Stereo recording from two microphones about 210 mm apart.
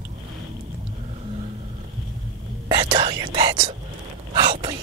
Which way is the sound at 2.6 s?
20° right (ahead or behind).